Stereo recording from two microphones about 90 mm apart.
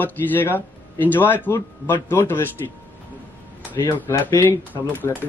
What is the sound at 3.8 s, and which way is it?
Speech, 25° left (ahead or behind).